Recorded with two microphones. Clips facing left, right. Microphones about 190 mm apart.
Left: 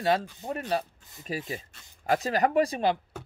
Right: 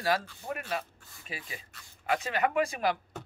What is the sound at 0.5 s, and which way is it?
Speech, 35° left (ahead or behind).